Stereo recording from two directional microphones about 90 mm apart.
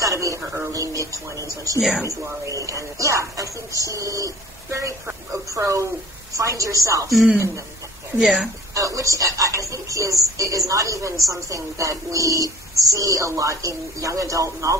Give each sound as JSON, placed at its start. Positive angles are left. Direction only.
{"t": 0.0, "sound": "speech", "side_deg": -35}
{"t": 1.8, "sound": "speech", "side_deg": 0}
{"t": 2.0, "sound": "speech", "side_deg": -35}
{"t": 7.1, "sound": "speech", "side_deg": 0}
{"t": 7.3, "sound": "speech", "side_deg": -35}
{"t": 8.2, "sound": "speech", "side_deg": 0}
{"t": 8.7, "sound": "speech", "side_deg": -40}